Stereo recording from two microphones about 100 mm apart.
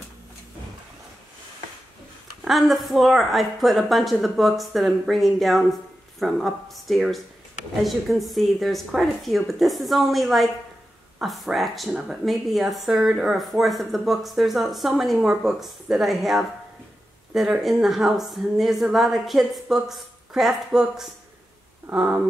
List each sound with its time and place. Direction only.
2.4 s speech: centre (ahead or behind)
21.8 s speech: 15° right (ahead or behind)